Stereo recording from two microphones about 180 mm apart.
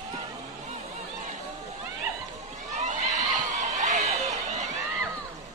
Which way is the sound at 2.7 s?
40° right (ahead or behind).